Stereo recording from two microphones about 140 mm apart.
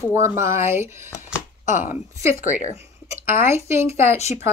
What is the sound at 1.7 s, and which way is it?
Speech, 65° left (ahead or behind).